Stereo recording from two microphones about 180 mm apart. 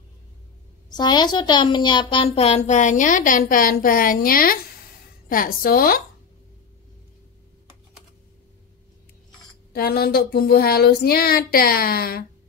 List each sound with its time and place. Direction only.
0.8 s a child's voice: 25° left (ahead or behind); by 5.9 s 55° left (ahead or behind)
9.7 s speech: 60° left (ahead or behind)